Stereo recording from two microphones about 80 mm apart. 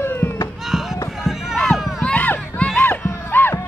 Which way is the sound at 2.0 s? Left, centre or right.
Centre.